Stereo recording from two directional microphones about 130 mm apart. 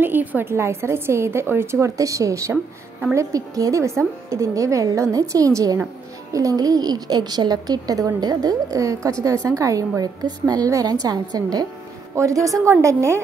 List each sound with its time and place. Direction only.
0.0 s a woman's voice: 15° right (ahead or behind)
2.5 s speech: 10° right (ahead or behind)
3.2 s a woman's voice: 25° right (ahead or behind)